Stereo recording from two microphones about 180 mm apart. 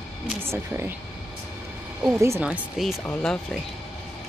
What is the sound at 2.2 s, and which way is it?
Speech, 10° right (ahead or behind).